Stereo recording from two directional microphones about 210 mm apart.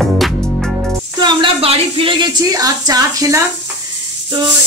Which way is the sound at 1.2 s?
20° right (ahead or behind).